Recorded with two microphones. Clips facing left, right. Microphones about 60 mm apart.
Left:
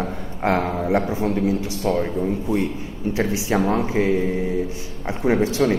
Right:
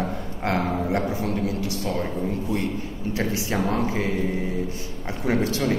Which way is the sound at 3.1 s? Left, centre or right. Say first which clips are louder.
Left 4 dB; left.